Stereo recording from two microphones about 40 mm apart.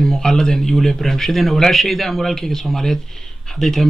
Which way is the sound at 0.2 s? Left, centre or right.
Centre.